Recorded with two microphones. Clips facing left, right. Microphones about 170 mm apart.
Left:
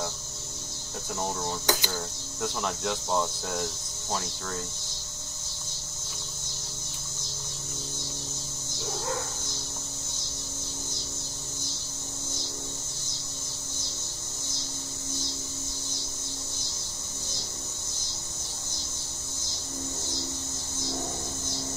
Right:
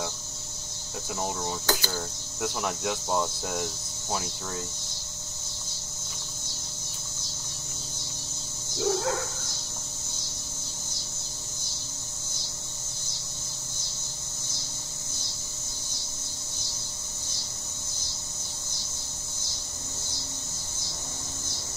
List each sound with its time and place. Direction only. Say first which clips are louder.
1.7 s speech: left 1 dB; 15° left (ahead or behind)
2.4 s speech: right 1 dB; 10° right (ahead or behind)